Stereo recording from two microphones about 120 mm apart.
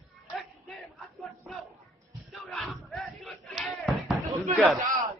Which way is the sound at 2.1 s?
Centre (ahead or behind).